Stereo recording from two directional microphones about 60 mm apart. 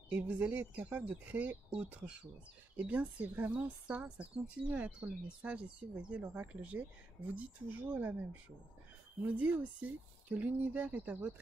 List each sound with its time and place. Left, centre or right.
0.1 s speech: right
9.2 s speech: right